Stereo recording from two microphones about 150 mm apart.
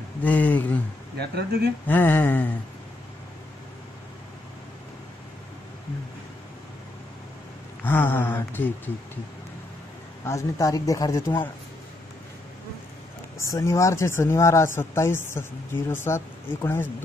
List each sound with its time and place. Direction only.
0.2 s speech: 10° left (ahead or behind)
1.1 s speech: 90° right
1.9 s speech: 15° left (ahead or behind)
7.8 s speech: 15° left (ahead or behind)
10.2 s speech: 20° left (ahead or behind)
13.4 s speech: 20° left (ahead or behind)